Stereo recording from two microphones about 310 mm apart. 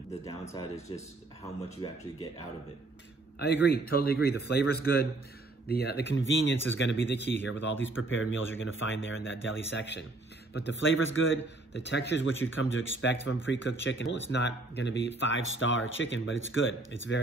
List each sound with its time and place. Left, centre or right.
0.2 s speech: centre
3.9 s speech: left